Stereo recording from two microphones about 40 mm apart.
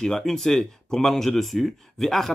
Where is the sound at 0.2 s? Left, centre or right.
Centre.